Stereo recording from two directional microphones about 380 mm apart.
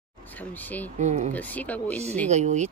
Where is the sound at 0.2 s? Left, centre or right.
Centre.